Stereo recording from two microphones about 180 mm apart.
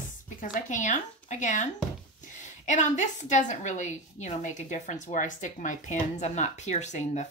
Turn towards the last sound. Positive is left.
turn(degrees=40)  # may be behind; listen again after turning